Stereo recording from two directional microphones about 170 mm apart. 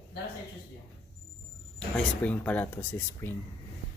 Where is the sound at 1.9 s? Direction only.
10° left (ahead or behind).